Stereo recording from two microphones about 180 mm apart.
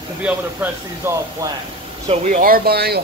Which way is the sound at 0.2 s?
10° right (ahead or behind).